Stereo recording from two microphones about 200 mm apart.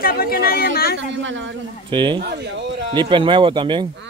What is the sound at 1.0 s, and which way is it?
Speech, 65° right (ahead or behind).